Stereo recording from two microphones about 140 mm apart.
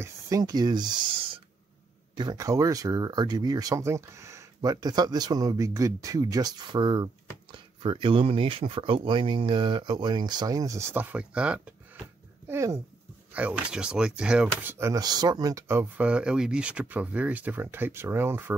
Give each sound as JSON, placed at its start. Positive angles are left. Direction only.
{"t": 0.0, "sound": "a sound", "side_deg": -25}
{"t": 2.1, "sound": "speech", "side_deg": -25}
{"t": 12.4, "sound": "speech", "side_deg": -20}